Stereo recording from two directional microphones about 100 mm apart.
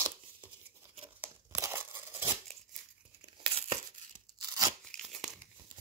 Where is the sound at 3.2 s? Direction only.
65° right (ahead or behind).